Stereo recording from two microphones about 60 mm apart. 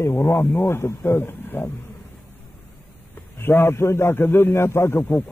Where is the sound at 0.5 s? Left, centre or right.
Left.